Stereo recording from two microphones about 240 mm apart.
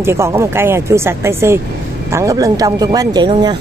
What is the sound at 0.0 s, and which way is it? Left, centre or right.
Speech, centre.